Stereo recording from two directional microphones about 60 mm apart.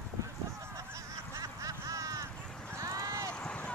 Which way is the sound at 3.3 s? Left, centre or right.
Left.